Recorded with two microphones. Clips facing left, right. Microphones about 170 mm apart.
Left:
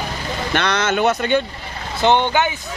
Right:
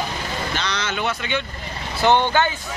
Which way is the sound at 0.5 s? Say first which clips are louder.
Left 11 dB; 55° left (ahead or behind).